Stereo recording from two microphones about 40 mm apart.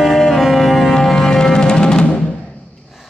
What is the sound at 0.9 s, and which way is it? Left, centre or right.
Music, centre.